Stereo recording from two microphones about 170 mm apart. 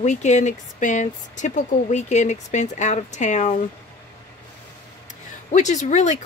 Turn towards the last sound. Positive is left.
turn(degrees=45)  # may be behind; listen again after turning